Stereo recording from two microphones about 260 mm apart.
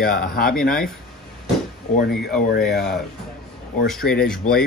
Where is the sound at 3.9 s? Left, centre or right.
Centre.